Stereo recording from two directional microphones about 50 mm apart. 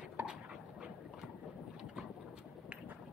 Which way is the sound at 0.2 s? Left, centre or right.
Right.